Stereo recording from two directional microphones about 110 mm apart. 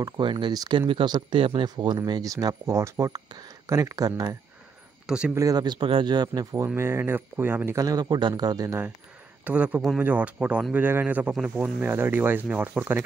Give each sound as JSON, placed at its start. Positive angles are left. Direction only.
{"t": 0.0, "sound": "speech", "side_deg": -45}
{"t": 3.3, "sound": "speech", "side_deg": -40}
{"t": 3.6, "sound": "speech", "side_deg": -30}
{"t": 5.0, "sound": "speech", "side_deg": -5}
{"t": 5.3, "sound": "speech", "side_deg": -35}
{"t": 6.7, "sound": "speech", "side_deg": -20}
{"t": 9.4, "sound": "speech", "side_deg": -15}